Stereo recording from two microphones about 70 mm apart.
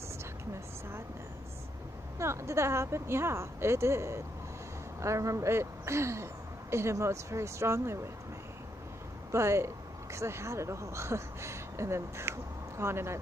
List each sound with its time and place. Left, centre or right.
2.1 s speech: right
9.3 s speech: right